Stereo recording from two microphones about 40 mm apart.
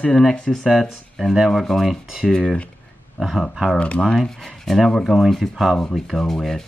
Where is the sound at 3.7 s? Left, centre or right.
Left.